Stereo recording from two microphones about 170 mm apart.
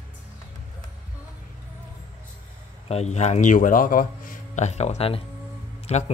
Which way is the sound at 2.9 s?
40° left (ahead or behind).